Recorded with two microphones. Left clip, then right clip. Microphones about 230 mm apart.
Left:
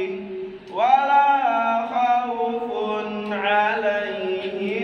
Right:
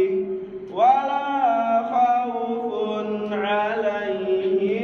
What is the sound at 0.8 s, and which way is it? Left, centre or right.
Male singing, left.